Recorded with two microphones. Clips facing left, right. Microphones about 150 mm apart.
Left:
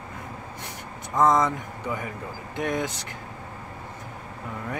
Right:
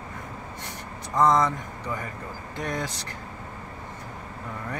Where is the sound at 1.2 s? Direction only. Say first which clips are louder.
Even; 5° left (ahead or behind).